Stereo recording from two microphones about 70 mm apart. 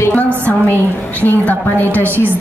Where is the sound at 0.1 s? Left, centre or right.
Left.